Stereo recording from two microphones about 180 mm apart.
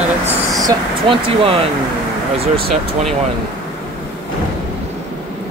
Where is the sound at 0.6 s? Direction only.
30° right (ahead or behind).